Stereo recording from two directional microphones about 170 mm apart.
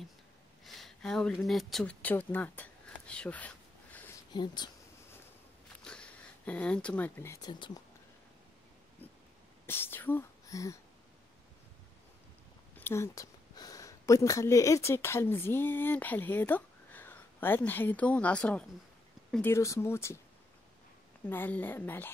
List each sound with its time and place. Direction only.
0.7 s speech: centre (ahead or behind)
4.3 s speech: 25° left (ahead or behind)
5.9 s a sound: 5° left (ahead or behind)
7.4 s speech: 25° left (ahead or behind)
9.7 s speech: 15° left (ahead or behind)
12.7 s a woman's voice: 15° left (ahead or behind)
21.3 s speech: 10° left (ahead or behind)